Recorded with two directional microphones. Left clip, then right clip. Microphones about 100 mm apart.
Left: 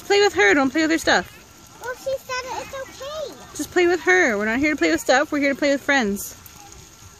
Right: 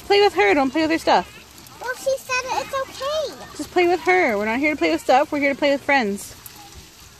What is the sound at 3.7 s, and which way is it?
Speech, 60° left (ahead or behind).